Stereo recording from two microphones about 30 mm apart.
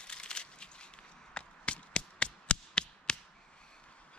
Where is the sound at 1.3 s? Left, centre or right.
Left.